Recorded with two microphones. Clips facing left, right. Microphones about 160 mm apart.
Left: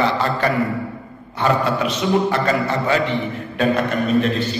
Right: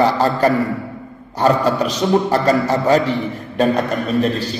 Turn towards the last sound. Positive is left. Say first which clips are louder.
# even
turn(degrees=-40)  # may be behind; listen again after turning